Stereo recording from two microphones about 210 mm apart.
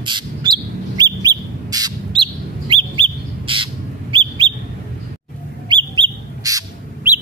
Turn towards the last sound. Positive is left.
turn(degrees=-15)  # may be behind; listen again after turning